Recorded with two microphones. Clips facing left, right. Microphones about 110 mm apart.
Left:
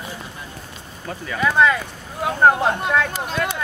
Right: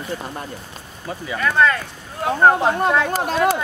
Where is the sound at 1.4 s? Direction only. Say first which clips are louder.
Left 1 dB; 10° left (ahead or behind).